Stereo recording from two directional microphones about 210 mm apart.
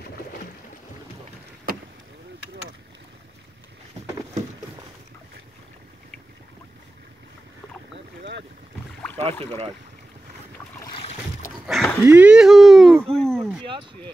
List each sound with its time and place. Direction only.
1.7 s rowboat: 45° right (ahead or behind)
8.2 s boat: 55° right (ahead or behind)
11.6 s dog: centre (ahead or behind)
12.0 s a sound: 5° right (ahead or behind)